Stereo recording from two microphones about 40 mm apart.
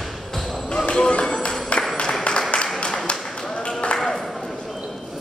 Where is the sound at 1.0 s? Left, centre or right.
Left.